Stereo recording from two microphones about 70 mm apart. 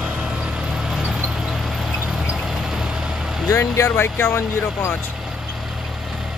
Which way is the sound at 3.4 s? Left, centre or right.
Left.